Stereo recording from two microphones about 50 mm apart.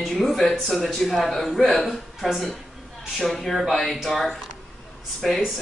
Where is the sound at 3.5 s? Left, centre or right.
Centre.